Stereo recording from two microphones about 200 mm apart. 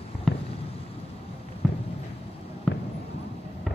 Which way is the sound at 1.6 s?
5° left (ahead or behind).